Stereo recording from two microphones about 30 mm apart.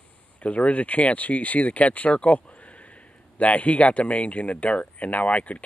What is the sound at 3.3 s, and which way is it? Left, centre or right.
Speech, left.